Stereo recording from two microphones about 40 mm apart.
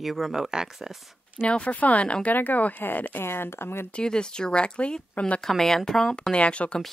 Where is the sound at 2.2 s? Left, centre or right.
Left.